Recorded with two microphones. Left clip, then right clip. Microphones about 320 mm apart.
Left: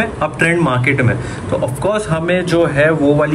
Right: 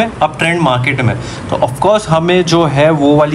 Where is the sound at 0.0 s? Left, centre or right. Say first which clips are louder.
Right 3 dB; centre.